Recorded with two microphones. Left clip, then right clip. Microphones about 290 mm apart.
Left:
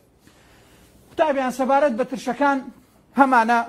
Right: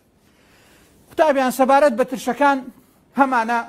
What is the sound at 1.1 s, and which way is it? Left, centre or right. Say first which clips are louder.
Speech: right 4 dB; centre.